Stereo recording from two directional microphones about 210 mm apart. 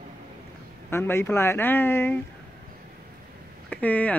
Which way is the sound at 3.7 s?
5° left (ahead or behind).